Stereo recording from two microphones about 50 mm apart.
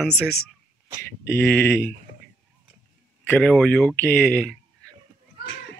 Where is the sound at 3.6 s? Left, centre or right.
Left.